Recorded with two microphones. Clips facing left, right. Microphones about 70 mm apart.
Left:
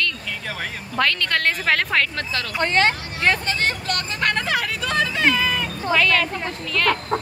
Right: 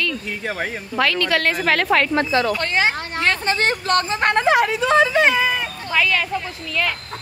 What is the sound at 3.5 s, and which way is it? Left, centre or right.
Speech, right.